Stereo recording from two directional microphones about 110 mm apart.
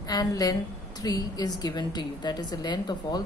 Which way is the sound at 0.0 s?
35° left (ahead or behind).